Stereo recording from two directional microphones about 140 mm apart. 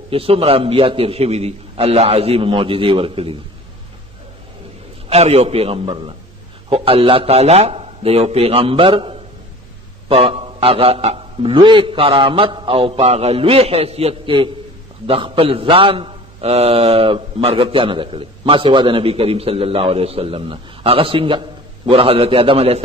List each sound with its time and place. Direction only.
0.1 s a man's voice: 40° right (ahead or behind)
5.1 s a man's voice: 50° right (ahead or behind)